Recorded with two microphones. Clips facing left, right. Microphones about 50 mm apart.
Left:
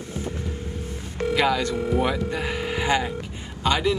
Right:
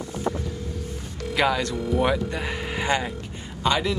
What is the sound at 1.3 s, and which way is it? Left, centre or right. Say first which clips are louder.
Speech: left 1 dB; centre.